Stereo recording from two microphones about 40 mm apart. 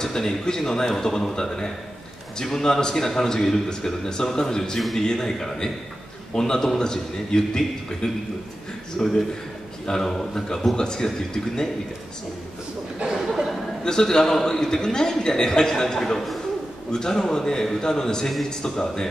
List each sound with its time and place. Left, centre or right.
0.0 s a man's voice: centre
4.7 s a man's voice: centre
5.0 s a man's voice: centre
13.8 s a man's voice: centre
16.9 s a man's voice: centre